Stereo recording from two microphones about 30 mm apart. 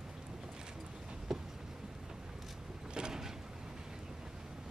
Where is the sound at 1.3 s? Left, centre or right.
Centre.